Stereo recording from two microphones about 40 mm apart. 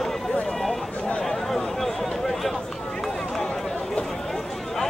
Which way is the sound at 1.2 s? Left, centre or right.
Centre.